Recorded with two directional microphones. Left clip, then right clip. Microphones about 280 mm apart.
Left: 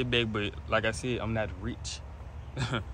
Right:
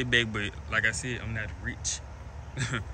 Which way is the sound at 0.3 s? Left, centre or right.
Centre.